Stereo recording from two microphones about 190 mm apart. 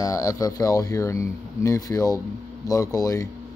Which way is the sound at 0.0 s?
20° left (ahead or behind).